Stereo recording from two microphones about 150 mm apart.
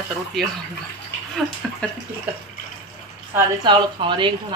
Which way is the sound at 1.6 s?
5° left (ahead or behind).